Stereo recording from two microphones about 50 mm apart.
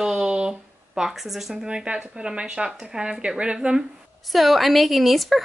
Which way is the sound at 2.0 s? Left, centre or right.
Centre.